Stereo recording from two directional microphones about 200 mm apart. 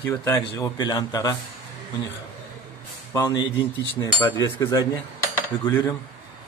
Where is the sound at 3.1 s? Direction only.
15° left (ahead or behind).